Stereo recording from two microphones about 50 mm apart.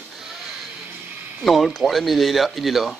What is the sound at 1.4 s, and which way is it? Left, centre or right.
Speech, centre.